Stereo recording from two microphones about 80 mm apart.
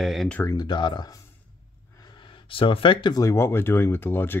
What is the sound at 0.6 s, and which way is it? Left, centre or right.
Speech, left.